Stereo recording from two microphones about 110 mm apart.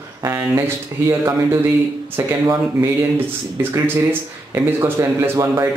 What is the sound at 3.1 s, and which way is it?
A man's voice, 20° right (ahead or behind).